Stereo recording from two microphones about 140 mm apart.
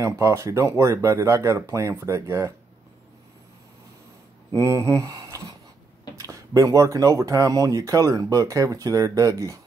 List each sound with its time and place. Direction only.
0.0 s speech: 20° right (ahead or behind)
4.6 s speech: 25° right (ahead or behind)